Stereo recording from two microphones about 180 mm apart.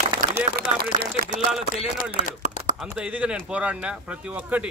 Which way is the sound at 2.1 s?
45° right (ahead or behind).